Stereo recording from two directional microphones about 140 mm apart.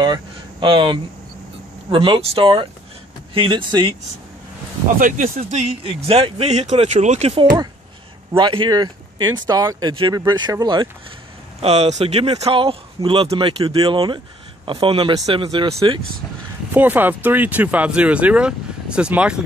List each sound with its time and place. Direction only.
0.0 s air conditioning: 30° right (ahead or behind)
1.9 s speech: 40° right (ahead or behind)
4.8 s speech: 70° right (ahead or behind); by 7.4 s 50° right (ahead or behind)
8.4 s speech: 35° right (ahead or behind)
11.6 s speech: 50° right (ahead or behind)
16.7 s speech: 15° right (ahead or behind)